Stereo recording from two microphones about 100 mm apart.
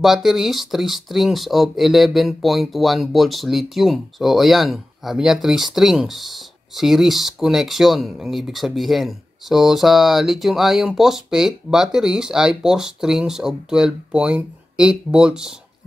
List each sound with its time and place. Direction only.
0.0 s speech: centre (ahead or behind)